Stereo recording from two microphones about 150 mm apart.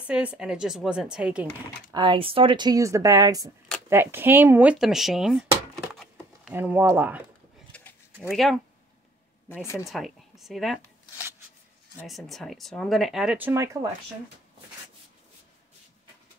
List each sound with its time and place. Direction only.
0.0 s a woman's voice: 10° right (ahead or behind)
1.9 s speech: 30° right (ahead or behind); by 5.5 s 5° right (ahead or behind)
6.5 s speech: 10° right (ahead or behind)
7.7 s a sound: 10° left (ahead or behind)
8.3 s a woman's voice: centre (ahead or behind)
9.8 s speech: centre (ahead or behind)
12.1 s a woman's voice: centre (ahead or behind)